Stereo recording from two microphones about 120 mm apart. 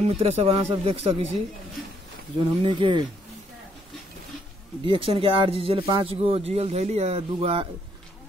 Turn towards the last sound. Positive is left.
turn(degrees=-50)  # may be behind; listen again after turning